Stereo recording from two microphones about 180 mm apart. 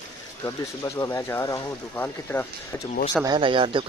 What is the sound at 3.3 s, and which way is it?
Speech, 30° right (ahead or behind).